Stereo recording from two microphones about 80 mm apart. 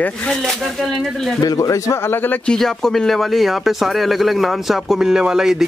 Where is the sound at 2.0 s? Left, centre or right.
Left.